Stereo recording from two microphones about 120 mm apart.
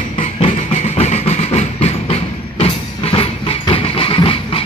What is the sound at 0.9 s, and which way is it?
Music, 65° left (ahead or behind).